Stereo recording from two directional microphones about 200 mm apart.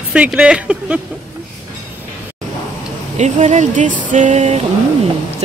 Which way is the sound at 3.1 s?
35° right (ahead or behind).